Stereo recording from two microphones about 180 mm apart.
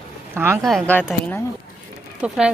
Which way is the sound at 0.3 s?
15° right (ahead or behind).